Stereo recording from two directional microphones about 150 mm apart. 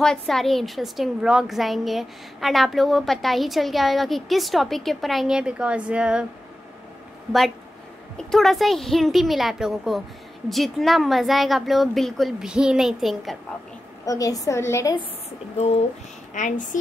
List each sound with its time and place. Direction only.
0.0 s a woman's voice: 5° left (ahead or behind)
8.2 s a woman's voice: centre (ahead or behind)
14.0 s a woman's voice: 25° left (ahead or behind)
15.5 s a woman's voice: 45° left (ahead or behind)